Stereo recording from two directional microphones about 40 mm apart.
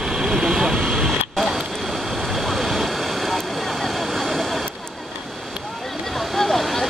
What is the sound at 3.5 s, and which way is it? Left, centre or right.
Vehicle, centre.